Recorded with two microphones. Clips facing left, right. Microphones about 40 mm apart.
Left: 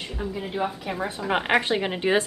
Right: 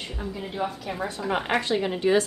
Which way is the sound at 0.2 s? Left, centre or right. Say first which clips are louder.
Left 2 dB; centre.